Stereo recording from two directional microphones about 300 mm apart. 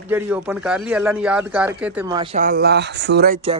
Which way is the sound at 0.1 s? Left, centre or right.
Centre.